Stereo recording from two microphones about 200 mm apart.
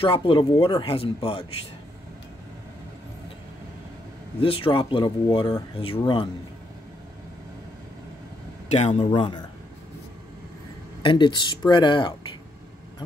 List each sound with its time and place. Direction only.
0.0 s speech: 25° left (ahead or behind)
4.4 s speech: 25° left (ahead or behind)
8.6 s speech: 35° left (ahead or behind)
11.0 s speech: 25° left (ahead or behind)